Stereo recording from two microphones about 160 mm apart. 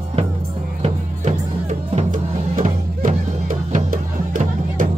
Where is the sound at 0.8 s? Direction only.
45° right (ahead or behind).